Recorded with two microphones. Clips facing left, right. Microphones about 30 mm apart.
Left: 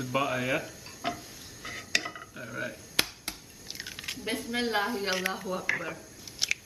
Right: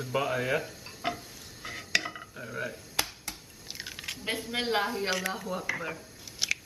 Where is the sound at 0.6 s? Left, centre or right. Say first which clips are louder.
Right 1 dB; centre.